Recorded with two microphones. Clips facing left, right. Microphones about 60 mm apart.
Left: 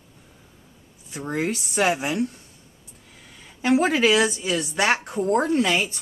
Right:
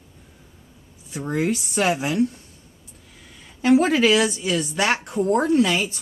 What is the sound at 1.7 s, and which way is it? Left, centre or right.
Speech, centre.